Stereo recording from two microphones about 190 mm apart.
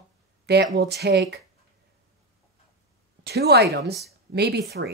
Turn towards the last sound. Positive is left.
turn(degrees=-60)  # may be behind; listen again after turning